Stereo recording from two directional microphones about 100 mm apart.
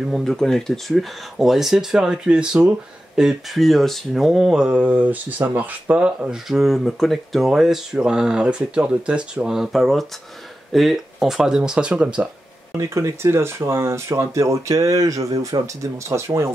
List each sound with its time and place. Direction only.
0.1 s speech: 5° left (ahead or behind)
12.7 s speech: 30° right (ahead or behind)